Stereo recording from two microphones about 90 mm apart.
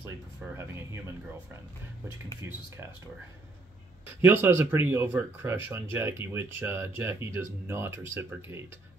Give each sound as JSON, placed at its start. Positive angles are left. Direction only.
{"t": 0.5, "sound": "speech", "side_deg": -30}
{"t": 4.2, "sound": "speech", "side_deg": -25}